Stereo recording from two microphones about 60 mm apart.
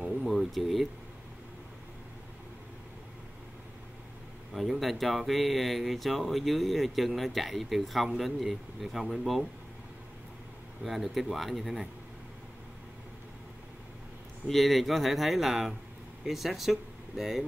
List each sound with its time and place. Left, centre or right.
0.0 s a sound: centre
4.6 s speech: centre
10.8 s speech: centre
14.5 s speech: centre